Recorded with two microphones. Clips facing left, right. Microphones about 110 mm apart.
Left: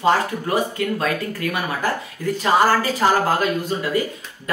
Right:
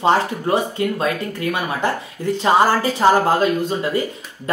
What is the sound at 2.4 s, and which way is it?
Speech, 25° right (ahead or behind).